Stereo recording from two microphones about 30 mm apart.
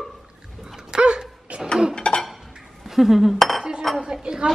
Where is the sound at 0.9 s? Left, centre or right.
Right.